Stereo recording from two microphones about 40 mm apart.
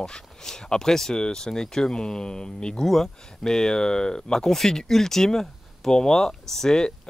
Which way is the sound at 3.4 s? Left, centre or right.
Centre.